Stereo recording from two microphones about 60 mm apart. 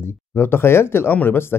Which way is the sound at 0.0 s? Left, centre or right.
Left.